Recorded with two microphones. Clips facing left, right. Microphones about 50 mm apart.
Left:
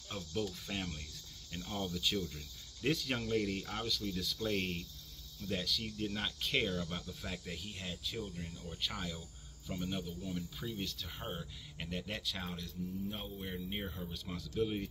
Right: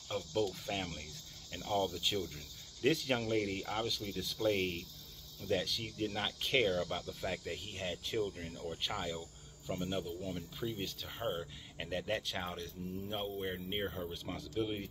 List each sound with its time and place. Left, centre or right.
0.1 s speech: centre
3.2 s speech: centre; by 8.2 s right
8.2 s speech: centre
8.8 s speech: right
9.7 s speech: centre
12.4 s speech: right
14.5 s speech: centre